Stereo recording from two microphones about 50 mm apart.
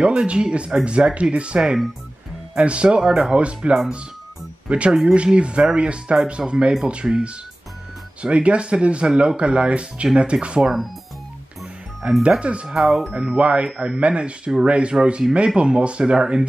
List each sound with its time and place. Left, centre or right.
0.0 s speech: right
12.0 s speech: centre
12.6 s speech: centre
13.3 s speech: right